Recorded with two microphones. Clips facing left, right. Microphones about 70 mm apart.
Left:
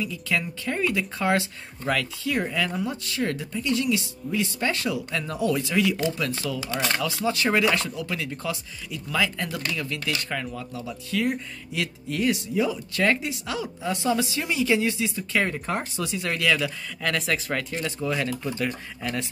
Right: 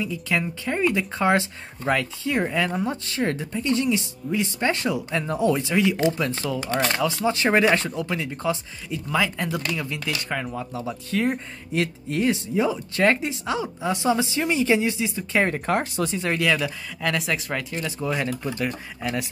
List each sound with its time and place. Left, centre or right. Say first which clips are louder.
0.0 s speech: right 2 dB; right
6.6 s speech: right 6 dB; right
6.9 s speech: right 3 dB; centre
15.5 s speech: right 5 dB; right
16.2 s speech: even; right